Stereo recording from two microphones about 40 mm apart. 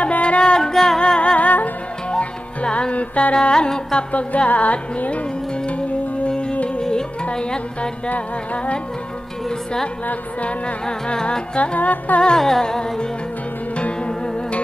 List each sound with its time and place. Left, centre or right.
0.0 s music: left
0.4 s music: centre; by 3.3 s left
3.3 s music: centre
4.1 s music: left
6.8 s music: centre
10.4 s music: left
11.5 s music: left
12.4 s music: centre
13.7 s music: left